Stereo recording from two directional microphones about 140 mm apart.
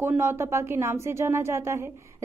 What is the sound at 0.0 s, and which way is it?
A woman's voice, 15° right (ahead or behind).